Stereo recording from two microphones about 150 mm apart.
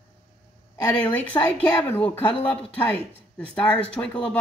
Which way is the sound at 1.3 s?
25° left (ahead or behind).